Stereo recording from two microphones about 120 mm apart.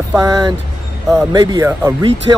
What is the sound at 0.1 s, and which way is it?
Speech, 30° right (ahead or behind).